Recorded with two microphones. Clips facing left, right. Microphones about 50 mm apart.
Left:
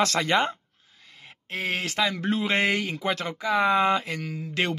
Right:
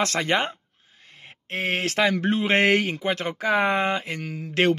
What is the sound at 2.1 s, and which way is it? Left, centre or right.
Speech, right.